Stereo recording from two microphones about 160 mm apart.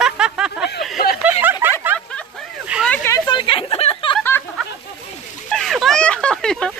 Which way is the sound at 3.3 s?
35° left (ahead or behind).